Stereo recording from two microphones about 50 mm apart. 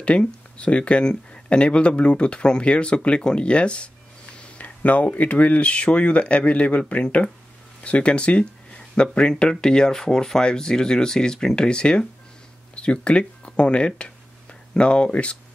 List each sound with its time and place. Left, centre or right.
0.0 s speech: left